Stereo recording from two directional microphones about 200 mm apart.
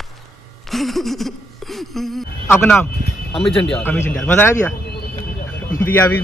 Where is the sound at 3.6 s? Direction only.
5° left (ahead or behind).